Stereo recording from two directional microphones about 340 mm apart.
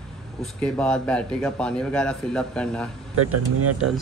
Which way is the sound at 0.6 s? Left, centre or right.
Centre.